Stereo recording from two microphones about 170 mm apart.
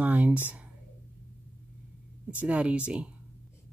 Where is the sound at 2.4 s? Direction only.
5° right (ahead or behind).